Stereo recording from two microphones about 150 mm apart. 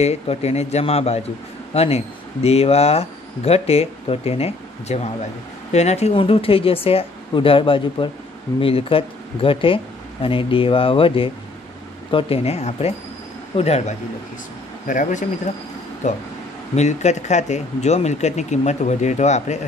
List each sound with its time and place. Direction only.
0.0 s speech: 45° left (ahead or behind)
14.9 s speech: 60° left (ahead or behind)
16.7 s speech: 50° left (ahead or behind)